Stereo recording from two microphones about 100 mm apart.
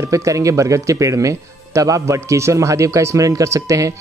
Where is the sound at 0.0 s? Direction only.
30° right (ahead or behind).